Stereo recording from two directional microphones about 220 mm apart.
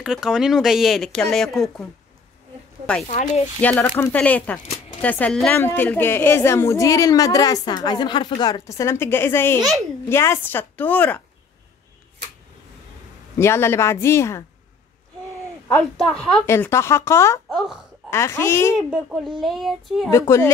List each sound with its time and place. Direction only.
0.0 s speech: centre (ahead or behind)
3.1 s speech: 30° left (ahead or behind)
3.6 s a woman's voice: 10° left (ahead or behind)
13.4 s a woman's voice: 10° left (ahead or behind)
16.0 s a woman's voice: 5° left (ahead or behind)
17.6 s speech: centre (ahead or behind)
18.1 s a woman's voice: 10° left (ahead or behind)
18.8 s speech: 5° right (ahead or behind)
20.1 s a woman's voice: 10° left (ahead or behind)